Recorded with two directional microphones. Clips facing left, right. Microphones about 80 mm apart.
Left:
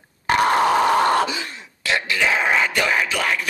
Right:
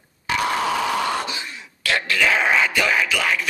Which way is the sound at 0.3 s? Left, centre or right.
Left.